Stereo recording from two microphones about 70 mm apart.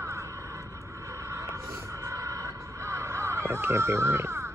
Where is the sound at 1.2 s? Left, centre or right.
Right.